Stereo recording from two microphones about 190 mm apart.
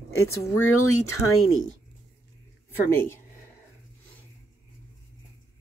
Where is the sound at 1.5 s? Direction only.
90° left.